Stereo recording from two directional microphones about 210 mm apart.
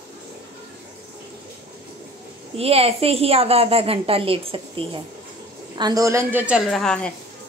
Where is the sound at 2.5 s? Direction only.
30° right (ahead or behind); by 7.1 s 5° left (ahead or behind).